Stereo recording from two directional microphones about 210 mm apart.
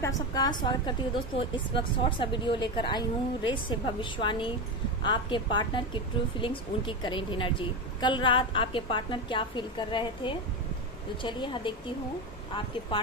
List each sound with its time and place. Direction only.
0.0 s a woman's voice: 20° left (ahead or behind)
12.9 s speech: 25° left (ahead or behind)